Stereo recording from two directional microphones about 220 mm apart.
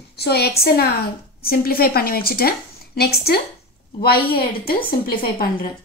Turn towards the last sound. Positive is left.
turn(degrees=40)  # may be behind; listen again after turning